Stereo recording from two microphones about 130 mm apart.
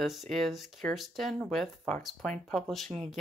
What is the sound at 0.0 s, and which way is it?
Speech, centre (ahead or behind).